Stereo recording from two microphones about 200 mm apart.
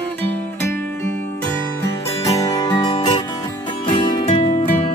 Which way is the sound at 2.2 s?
15° left (ahead or behind).